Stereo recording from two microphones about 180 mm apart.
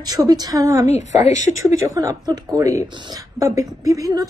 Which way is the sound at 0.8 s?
40° left (ahead or behind).